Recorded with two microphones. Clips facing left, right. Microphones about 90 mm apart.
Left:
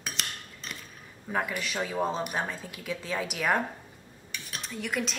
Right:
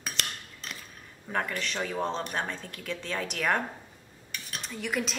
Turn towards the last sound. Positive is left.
turn(degrees=0)  # may be behind; listen again after turning